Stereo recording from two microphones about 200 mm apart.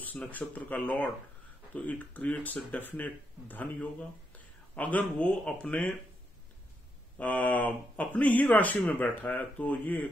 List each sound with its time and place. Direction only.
0.0 s speech: 10° left (ahead or behind)
4.7 s speech: 5° left (ahead or behind)
7.2 s speech: 5° left (ahead or behind)